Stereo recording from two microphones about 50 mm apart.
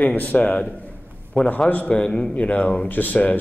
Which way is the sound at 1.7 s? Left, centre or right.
Left.